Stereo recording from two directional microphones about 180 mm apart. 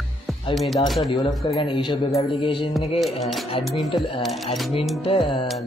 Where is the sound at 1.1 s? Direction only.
25° left (ahead or behind).